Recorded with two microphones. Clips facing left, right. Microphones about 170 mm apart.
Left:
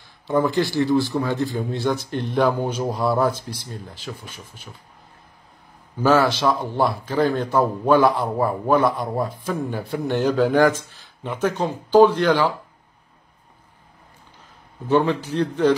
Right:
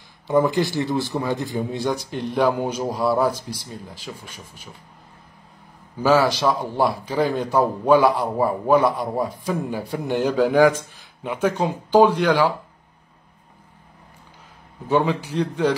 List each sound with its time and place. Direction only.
0.3 s speech: 20° right (ahead or behind)
1.9 s speech: centre (ahead or behind)
6.0 s speech: 5° right (ahead or behind)
14.9 s speech: 5° right (ahead or behind)